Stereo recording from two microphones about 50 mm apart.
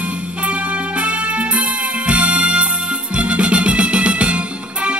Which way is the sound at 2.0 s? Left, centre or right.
Right.